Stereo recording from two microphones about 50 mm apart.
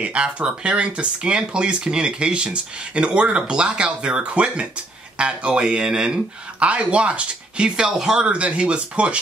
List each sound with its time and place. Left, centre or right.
0.0 s speech: right
8.3 s speech: right